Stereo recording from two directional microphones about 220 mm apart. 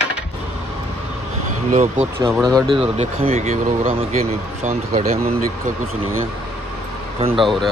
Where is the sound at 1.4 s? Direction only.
35° right (ahead or behind).